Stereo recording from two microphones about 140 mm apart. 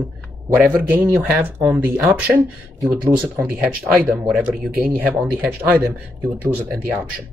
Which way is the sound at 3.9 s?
10° right (ahead or behind).